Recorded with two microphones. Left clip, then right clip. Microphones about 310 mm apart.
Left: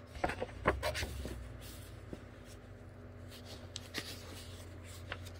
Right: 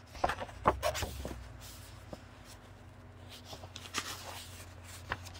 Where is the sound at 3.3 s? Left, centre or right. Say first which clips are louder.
Right 4 dB; centre.